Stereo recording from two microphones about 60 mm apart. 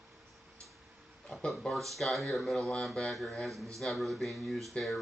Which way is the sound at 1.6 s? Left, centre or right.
Centre.